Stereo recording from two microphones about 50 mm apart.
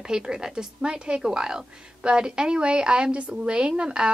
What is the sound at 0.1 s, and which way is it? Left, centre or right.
Speech, centre.